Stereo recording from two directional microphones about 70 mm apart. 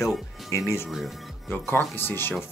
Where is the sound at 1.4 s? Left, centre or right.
Left.